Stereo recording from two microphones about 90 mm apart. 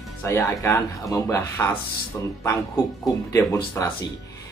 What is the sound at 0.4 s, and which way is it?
Speech, 40° left (ahead or behind).